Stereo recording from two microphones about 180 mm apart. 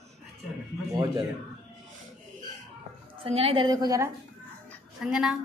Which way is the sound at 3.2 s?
35° right (ahead or behind).